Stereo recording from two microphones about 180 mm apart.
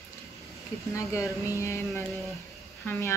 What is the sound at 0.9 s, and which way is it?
Speech, 15° left (ahead or behind).